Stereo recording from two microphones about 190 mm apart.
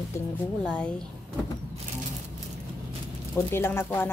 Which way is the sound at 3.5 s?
10° left (ahead or behind).